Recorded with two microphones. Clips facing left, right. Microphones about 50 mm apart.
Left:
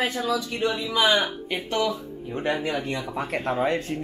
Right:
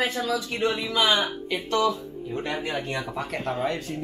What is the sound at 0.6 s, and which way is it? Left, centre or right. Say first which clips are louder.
Speech: right 2 dB; centre.